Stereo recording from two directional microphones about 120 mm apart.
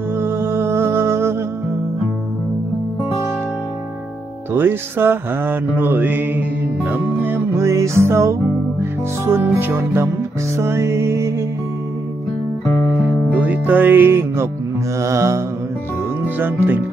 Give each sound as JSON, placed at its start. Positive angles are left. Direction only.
{"t": 0.2, "sound": "music", "side_deg": -20}
{"t": 4.6, "sound": "mantra", "side_deg": -15}
{"t": 9.2, "sound": "speech", "side_deg": -20}
{"t": 10.6, "sound": "music", "side_deg": -20}
{"t": 12.6, "sound": "music", "side_deg": 25}
{"t": 13.4, "sound": "music", "side_deg": -15}
{"t": 15.0, "sound": "speech", "side_deg": -25}
{"t": 16.3, "sound": "mantra", "side_deg": -15}